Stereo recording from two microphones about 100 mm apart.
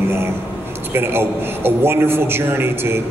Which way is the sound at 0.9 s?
25° right (ahead or behind).